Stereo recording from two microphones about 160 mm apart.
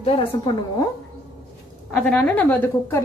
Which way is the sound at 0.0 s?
35° left (ahead or behind).